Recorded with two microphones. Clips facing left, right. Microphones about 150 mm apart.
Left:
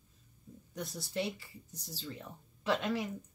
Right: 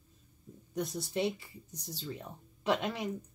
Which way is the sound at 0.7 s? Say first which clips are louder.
Right 4 dB; 20° right (ahead or behind).